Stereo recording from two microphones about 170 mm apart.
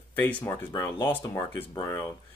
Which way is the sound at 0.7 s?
15° left (ahead or behind).